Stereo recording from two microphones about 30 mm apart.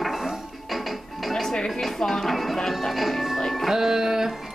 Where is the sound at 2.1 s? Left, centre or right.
Centre.